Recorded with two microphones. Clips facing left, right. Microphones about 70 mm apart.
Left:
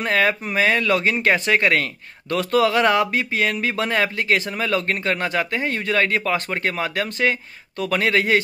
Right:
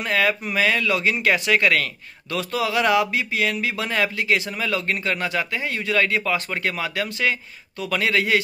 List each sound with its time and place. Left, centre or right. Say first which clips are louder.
0.0 s speech: left 2 dB; left